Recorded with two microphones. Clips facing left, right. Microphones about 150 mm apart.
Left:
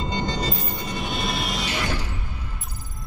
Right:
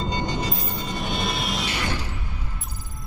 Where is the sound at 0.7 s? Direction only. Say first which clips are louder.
Even; centre (ahead or behind).